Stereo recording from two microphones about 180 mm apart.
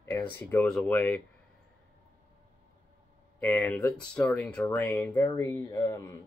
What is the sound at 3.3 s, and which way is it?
Speech, 5° left (ahead or behind).